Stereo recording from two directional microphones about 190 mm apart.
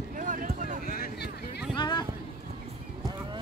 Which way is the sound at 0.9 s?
50° left (ahead or behind).